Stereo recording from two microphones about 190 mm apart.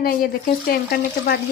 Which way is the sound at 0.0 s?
55° left (ahead or behind).